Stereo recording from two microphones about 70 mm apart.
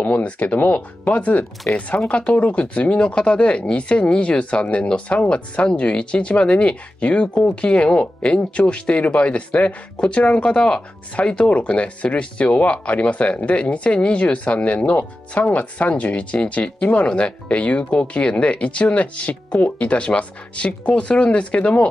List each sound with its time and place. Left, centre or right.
0.0 s speech: left